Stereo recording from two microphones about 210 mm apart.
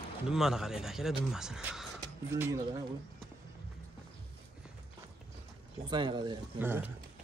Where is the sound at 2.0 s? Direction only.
15° right (ahead or behind).